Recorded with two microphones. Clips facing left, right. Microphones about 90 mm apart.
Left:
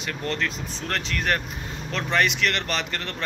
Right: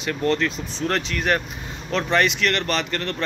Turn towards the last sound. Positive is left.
turn(degrees=10)  # may be behind; listen again after turning